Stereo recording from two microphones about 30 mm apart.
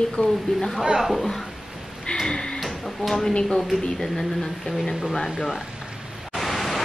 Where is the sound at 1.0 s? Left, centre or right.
Centre.